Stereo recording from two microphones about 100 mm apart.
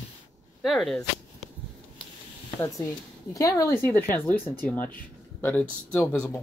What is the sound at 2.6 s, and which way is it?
A woman's voice, 35° left (ahead or behind).